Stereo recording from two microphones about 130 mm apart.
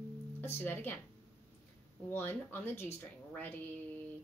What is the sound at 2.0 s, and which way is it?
A woman's voice, 15° left (ahead or behind).